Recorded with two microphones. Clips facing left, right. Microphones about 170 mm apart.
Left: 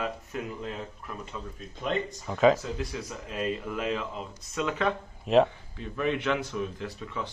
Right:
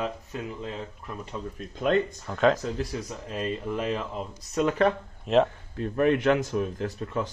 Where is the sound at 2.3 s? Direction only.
Centre (ahead or behind).